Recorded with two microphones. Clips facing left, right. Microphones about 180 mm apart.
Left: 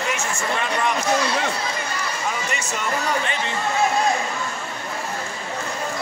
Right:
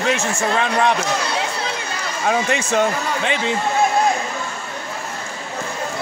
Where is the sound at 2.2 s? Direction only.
90° right.